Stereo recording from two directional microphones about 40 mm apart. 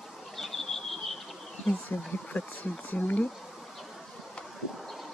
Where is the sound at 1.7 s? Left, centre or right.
Left.